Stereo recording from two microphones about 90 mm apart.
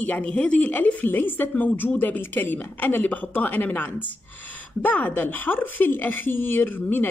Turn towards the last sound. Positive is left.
turn(degrees=20)  # may be behind; listen again after turning